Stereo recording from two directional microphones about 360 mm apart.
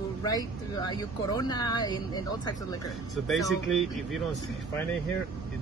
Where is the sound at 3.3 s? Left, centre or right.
Centre.